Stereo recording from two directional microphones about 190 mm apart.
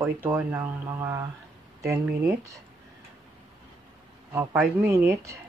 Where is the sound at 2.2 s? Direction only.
15° right (ahead or behind).